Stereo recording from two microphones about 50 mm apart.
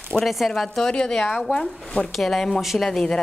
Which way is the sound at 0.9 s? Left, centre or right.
Centre.